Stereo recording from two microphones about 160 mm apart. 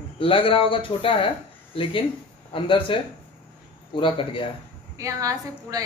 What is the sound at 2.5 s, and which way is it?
Speech, 30° left (ahead or behind).